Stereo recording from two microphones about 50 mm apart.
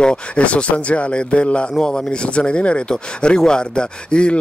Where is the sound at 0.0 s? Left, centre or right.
Left.